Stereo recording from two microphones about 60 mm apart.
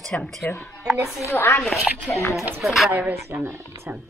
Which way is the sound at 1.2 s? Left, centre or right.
Left.